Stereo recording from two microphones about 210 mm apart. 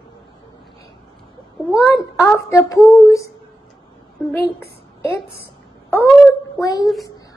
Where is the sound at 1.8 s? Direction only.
10° left (ahead or behind).